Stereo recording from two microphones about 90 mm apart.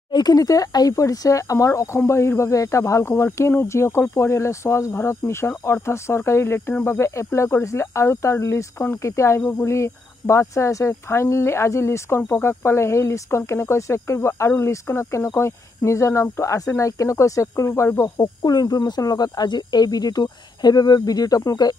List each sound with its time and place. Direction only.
0.1 s speech: 45° left (ahead or behind); by 18.3 s 30° left (ahead or behind)
18.4 s speech: 50° left (ahead or behind)